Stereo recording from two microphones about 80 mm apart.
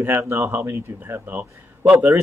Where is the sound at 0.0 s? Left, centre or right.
Right.